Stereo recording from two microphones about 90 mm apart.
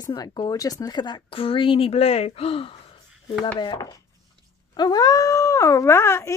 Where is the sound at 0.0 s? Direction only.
45° left (ahead or behind).